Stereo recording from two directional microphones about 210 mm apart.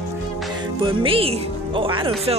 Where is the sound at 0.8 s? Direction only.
25° right (ahead or behind).